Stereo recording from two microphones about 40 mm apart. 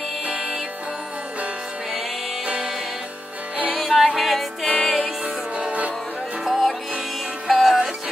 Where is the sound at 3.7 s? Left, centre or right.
Centre.